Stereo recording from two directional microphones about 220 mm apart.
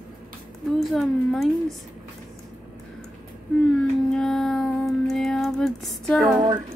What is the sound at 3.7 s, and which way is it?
Music, centre (ahead or behind).